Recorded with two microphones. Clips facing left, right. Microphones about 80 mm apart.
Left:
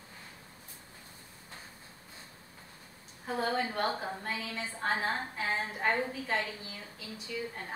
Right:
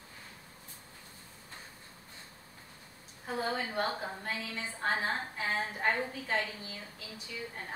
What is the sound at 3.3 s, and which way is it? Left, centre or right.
A woman's voice, centre.